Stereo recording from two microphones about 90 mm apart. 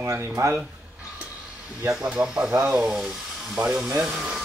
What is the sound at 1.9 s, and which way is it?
Speech, 15° right (ahead or behind).